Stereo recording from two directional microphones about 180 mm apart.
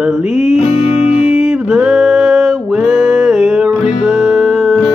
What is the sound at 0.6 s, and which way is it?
Music, 40° left (ahead or behind).